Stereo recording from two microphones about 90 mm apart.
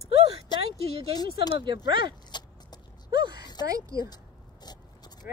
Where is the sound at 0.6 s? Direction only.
90° right.